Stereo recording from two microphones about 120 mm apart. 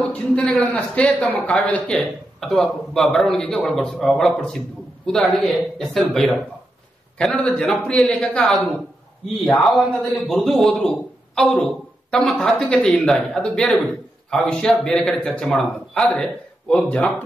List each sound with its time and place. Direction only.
0.5 s a man's voice: 10° left (ahead or behind)